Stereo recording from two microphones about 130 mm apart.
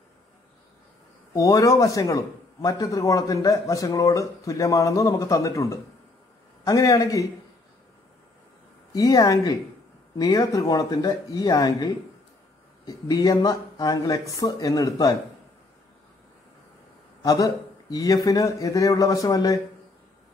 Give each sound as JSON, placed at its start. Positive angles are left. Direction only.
{"t": 1.3, "sound": "a man's voice", "side_deg": 30}
{"t": 8.9, "sound": "a man's voice", "side_deg": 30}
{"t": 17.2, "sound": "a man's voice", "side_deg": 30}